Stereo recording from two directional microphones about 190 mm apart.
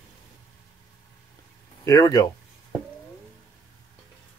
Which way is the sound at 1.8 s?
20° left (ahead or behind).